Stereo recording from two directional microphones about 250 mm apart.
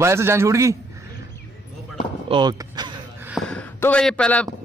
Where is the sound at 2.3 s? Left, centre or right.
Centre.